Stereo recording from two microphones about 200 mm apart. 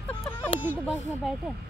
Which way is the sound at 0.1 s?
10° left (ahead or behind).